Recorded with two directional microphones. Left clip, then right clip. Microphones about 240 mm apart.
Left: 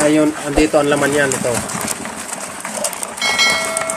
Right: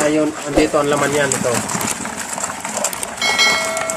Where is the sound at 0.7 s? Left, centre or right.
Centre.